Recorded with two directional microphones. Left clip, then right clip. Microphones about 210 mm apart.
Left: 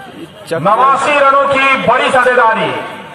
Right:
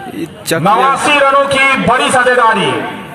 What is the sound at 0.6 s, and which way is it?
A man's voice, 20° right (ahead or behind).